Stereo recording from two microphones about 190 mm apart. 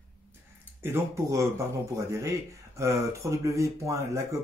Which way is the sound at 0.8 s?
15° right (ahead or behind).